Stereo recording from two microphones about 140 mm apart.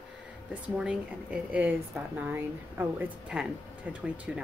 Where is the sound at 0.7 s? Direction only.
10° right (ahead or behind).